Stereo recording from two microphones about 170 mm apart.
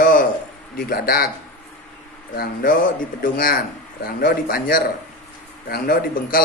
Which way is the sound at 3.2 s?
55° left (ahead or behind).